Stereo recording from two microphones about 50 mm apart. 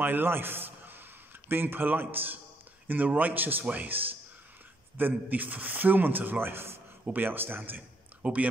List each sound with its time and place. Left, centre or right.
0.0 s a man's voice: right
7.1 s a man's voice: right
8.2 s speech: right